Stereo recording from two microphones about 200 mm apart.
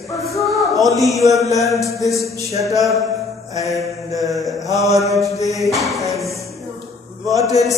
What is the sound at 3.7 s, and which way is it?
A man's voice, centre (ahead or behind).